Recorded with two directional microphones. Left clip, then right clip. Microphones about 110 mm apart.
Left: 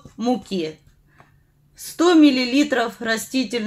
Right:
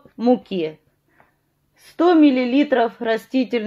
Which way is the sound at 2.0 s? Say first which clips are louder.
Even; 45° right (ahead or behind).